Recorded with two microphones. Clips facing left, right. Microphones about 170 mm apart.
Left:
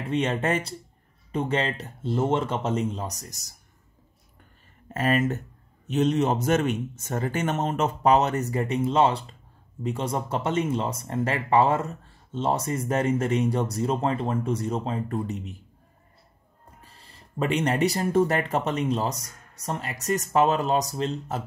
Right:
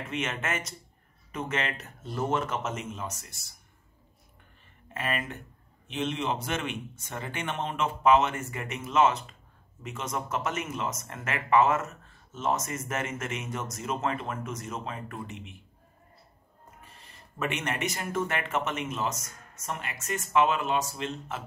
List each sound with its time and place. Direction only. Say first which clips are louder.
0.0 s speech: left 8 dB; 35° left (ahead or behind)
4.9 s speech: left 9 dB; 40° left (ahead or behind)
16.8 s speech: left 1 dB; 30° left (ahead or behind)